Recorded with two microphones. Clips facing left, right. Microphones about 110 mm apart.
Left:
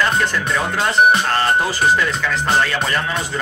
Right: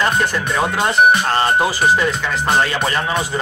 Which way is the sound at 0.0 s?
15° right (ahead or behind).